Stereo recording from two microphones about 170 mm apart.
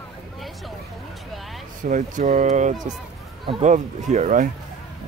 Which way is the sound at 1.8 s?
50° right (ahead or behind).